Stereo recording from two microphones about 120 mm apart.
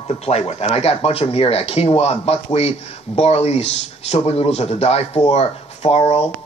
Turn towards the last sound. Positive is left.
turn(degrees=65)  # may be behind; listen again after turning